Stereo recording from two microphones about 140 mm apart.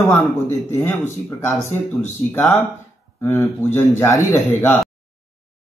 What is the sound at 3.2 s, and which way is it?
A man's voice, 15° left (ahead or behind).